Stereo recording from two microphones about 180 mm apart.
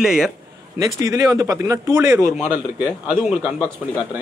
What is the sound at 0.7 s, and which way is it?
A man's voice, 20° right (ahead or behind).